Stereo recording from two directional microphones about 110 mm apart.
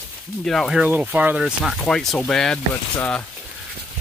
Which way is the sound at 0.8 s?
15° right (ahead or behind).